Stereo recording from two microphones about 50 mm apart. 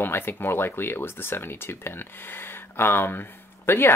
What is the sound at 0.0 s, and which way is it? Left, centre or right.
Speech, left.